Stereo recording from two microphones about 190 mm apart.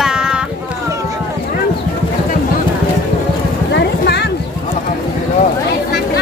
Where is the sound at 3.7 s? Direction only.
60° left (ahead or behind).